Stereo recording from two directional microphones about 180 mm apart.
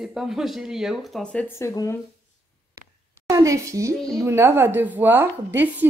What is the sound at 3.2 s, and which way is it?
A woman's voice, 20° right (ahead or behind).